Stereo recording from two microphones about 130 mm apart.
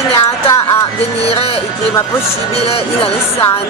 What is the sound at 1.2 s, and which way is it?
Music, 50° left (ahead or behind).